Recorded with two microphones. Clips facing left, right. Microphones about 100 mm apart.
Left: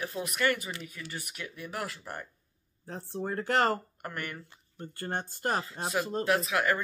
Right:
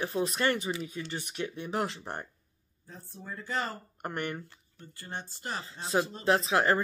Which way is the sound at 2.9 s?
75° left (ahead or behind).